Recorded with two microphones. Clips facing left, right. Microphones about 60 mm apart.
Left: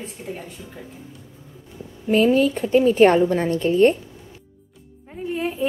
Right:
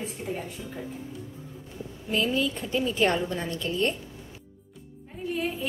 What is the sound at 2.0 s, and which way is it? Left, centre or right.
A woman's voice, left.